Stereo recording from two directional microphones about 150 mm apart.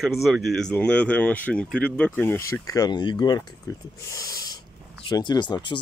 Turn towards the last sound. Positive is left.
turn(degrees=30)  # may be behind; listen again after turning